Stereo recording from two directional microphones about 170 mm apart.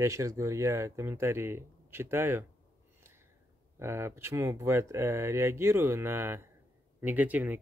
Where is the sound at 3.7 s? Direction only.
15° right (ahead or behind).